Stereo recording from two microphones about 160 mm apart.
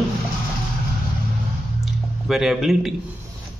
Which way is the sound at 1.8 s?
Centre (ahead or behind).